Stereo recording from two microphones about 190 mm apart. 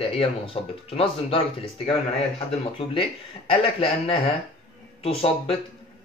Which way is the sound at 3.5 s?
30° left (ahead or behind).